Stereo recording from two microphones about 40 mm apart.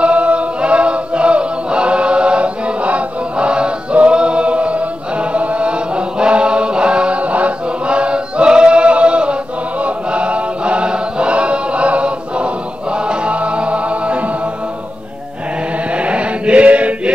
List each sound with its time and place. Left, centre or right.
0.0 s music: right
15.9 s chant: right